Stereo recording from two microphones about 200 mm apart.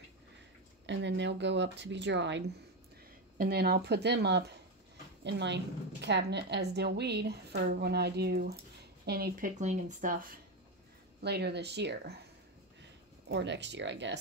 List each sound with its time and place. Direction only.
0.8 s a woman's voice: 60° right (ahead or behind)
3.3 s a woman's voice: 50° right (ahead or behind)
11.2 s a woman's voice: 55° right (ahead or behind)
13.3 s a woman's voice: 60° right (ahead or behind)